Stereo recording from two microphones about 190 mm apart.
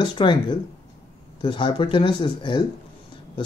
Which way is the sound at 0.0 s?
25° left (ahead or behind).